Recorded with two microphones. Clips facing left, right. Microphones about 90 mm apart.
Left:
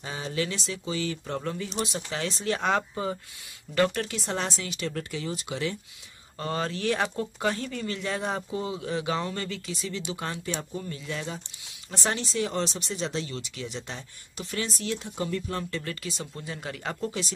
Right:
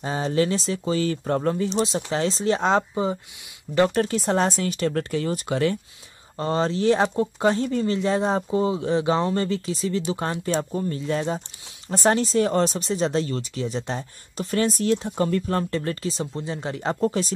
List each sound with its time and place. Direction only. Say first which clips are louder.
0.0 s speech: right 8 dB; 40° right (ahead or behind)
6.3 s speech: right 7 dB; 30° right (ahead or behind)